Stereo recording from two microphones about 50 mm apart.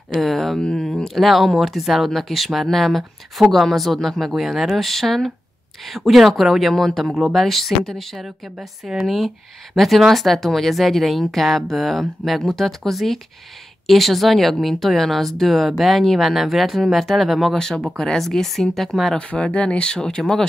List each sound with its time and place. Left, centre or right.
0.2 s a woman's voice: centre
17.6 s speech: centre
19.1 s speech: left